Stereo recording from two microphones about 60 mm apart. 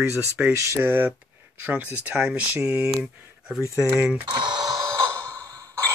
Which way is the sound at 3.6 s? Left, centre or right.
Left.